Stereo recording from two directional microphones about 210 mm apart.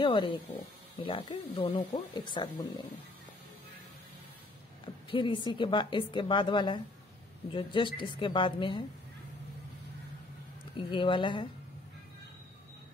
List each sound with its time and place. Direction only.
0.0 s a woman's voice: 25° left (ahead or behind)
4.8 s a woman's voice: 25° left (ahead or behind)
10.9 s a woman's voice: 25° left (ahead or behind)